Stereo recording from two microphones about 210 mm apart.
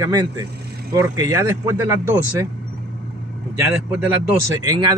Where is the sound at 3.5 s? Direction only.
10° right (ahead or behind).